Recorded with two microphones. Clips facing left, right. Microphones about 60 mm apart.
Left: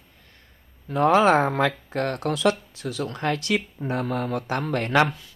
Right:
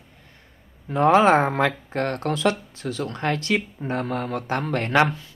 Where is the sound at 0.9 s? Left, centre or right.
Right.